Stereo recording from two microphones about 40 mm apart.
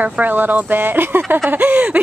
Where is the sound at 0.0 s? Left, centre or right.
Right.